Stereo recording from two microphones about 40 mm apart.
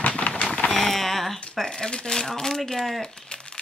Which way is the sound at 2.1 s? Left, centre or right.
Centre.